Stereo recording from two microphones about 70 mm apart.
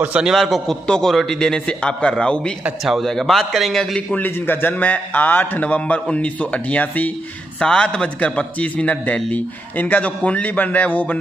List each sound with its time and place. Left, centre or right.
0.4 s a man's voice: centre
2.8 s a man's voice: centre
4.1 s a man's voice: left